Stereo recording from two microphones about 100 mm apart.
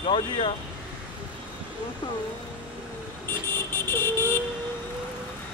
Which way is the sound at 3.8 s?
25° left (ahead or behind).